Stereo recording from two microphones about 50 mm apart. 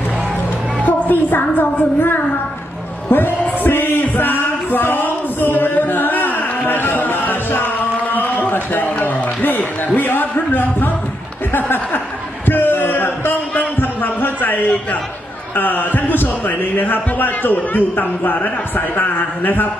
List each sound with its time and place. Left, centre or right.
0.8 s music: left
11.5 s speech: left
12.4 s a sound: left
15.5 s speech: left